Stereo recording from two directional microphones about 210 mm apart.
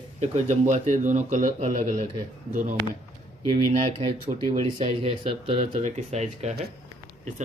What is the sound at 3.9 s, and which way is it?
Speech, 25° right (ahead or behind).